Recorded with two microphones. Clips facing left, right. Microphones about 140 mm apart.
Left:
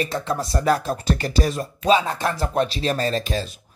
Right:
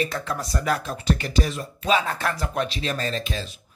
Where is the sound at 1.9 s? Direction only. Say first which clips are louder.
Left 4 dB; 20° left (ahead or behind).